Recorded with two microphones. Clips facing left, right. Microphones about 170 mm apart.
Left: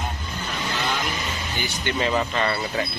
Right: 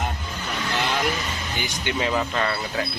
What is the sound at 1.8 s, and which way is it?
Speech, 10° right (ahead or behind).